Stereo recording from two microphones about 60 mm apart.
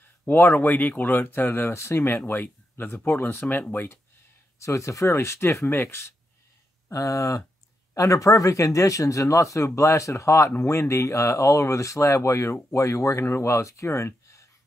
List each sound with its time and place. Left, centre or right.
0.3 s speech: left
4.6 s speech: left
6.9 s speech: left